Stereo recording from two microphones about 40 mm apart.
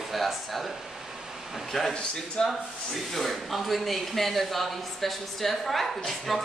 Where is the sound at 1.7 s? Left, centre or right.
Centre.